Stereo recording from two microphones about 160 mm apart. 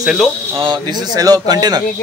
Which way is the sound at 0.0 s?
Centre (ahead or behind).